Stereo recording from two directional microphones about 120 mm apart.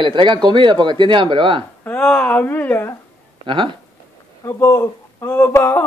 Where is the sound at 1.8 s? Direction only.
10° left (ahead or behind).